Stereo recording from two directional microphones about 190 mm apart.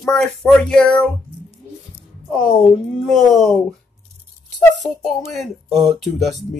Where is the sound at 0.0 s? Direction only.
5° left (ahead or behind).